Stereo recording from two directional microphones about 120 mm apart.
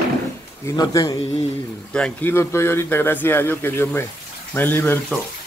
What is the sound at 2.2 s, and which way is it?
Speech, 20° left (ahead or behind).